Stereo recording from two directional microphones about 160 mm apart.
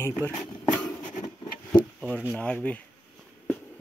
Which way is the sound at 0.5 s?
Centre (ahead or behind).